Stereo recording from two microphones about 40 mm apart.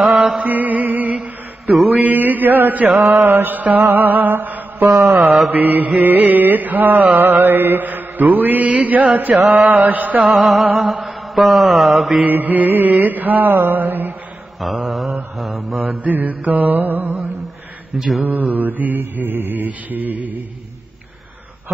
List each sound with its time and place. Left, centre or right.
0.4 s music: right
2.0 s mantra: right
3.4 s mantra: right
7.2 s mantra: right
10.3 s mantra: centre
12.3 s mantra: right
14.6 s mantra: centre
16.0 s mantra: right
17.9 s mantra: centre
18.2 s mantra: right